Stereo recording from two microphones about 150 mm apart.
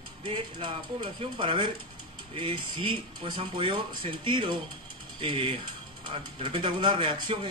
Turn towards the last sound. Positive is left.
turn(degrees=-35)  # may be behind; listen again after turning